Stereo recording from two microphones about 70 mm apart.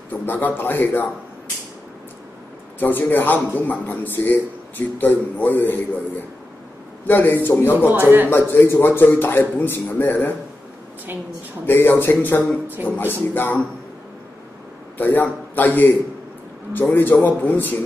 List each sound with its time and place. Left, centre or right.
0.1 s speech: left
2.8 s speech: left
7.1 s a man's voice: left
7.7 s speech: right
8.3 s a man's voice: left
11.6 s a man's voice: left
15.0 s a man's voice: left
16.9 s speech: left